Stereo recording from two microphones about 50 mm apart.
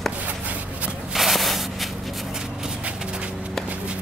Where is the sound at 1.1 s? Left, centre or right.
Centre.